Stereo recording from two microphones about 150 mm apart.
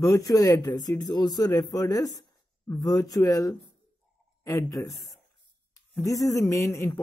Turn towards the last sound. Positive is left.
turn(degrees=20)  # may be behind; listen again after turning